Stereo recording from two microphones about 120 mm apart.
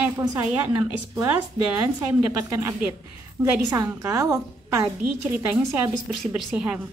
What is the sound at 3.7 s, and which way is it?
A woman's voice, 25° right (ahead or behind).